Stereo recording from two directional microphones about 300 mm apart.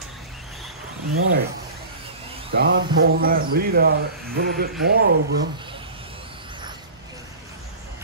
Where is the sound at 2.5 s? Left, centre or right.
Right.